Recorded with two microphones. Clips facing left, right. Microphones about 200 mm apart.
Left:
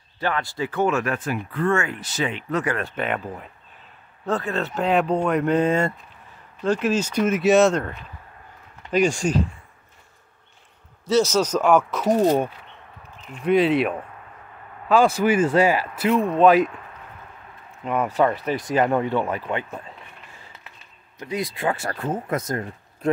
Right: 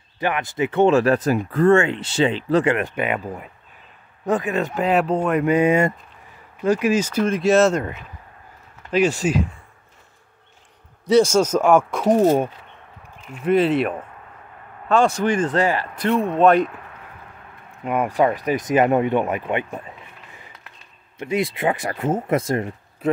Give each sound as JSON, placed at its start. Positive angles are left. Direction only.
{"t": 0.2, "sound": "speech", "side_deg": -20}
{"t": 7.2, "sound": "speech", "side_deg": 5}
{"t": 8.9, "sound": "speech", "side_deg": -5}
{"t": 11.1, "sound": "a man's voice", "side_deg": -55}
{"t": 11.3, "sound": "speech", "side_deg": -10}
{"t": 13.2, "sound": "speech", "side_deg": -5}
{"t": 17.8, "sound": "speech", "side_deg": -10}
{"t": 21.2, "sound": "speech", "side_deg": -25}
{"t": 23.0, "sound": "a man's voice", "side_deg": -5}